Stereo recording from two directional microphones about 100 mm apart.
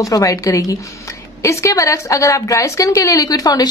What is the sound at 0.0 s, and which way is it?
A woman's voice, 35° left (ahead or behind).